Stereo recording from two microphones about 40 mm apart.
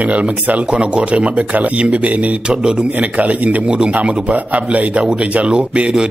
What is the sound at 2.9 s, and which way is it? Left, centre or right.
Speech, right.